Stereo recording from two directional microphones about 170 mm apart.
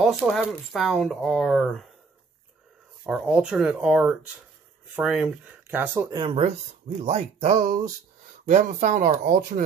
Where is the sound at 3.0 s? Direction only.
5° right (ahead or behind).